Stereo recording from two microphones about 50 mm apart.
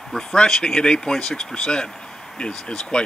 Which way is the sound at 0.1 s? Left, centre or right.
Centre.